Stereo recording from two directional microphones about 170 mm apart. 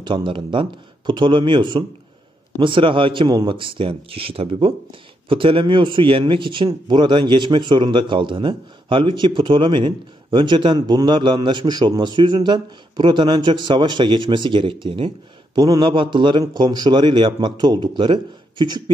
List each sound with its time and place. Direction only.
0.0 s speech: 30° right (ahead or behind)